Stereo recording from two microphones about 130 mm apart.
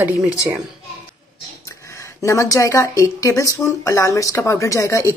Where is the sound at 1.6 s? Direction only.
25° left (ahead or behind).